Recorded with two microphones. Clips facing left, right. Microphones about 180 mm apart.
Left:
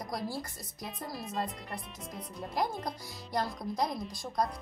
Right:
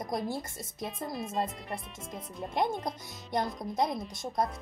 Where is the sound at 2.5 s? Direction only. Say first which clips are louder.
Right 3 dB; 25° right (ahead or behind).